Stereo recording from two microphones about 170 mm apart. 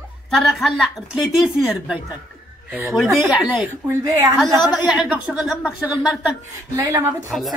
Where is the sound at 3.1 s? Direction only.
10° right (ahead or behind).